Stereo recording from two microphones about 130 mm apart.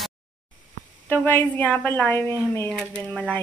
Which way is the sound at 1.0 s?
15° left (ahead or behind).